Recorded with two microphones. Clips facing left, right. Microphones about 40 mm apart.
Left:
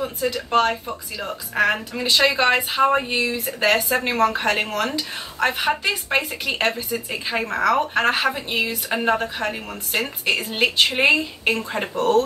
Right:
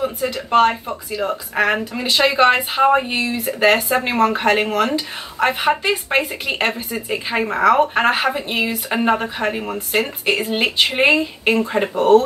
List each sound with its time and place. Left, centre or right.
0.0 s speech: centre